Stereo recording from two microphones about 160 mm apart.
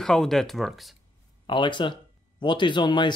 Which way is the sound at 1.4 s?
30° left (ahead or behind).